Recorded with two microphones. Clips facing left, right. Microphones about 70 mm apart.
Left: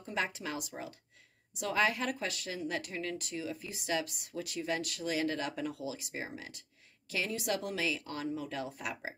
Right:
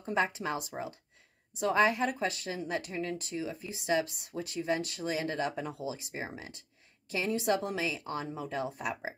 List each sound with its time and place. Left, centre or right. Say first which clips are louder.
0.0 s a woman's voice: right 5 dB; right